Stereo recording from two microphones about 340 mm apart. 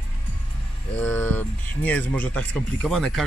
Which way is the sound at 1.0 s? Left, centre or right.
Centre.